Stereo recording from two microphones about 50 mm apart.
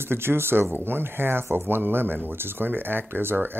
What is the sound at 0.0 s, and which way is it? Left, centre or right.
Speech, right.